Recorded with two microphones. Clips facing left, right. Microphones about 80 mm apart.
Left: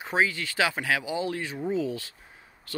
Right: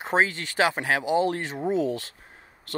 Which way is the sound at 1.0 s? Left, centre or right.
Right.